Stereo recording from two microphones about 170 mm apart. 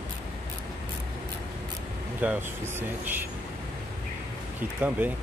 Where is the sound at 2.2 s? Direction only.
10° right (ahead or behind).